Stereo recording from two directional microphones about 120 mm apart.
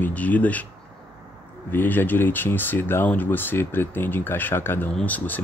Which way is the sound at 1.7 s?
15° left (ahead or behind).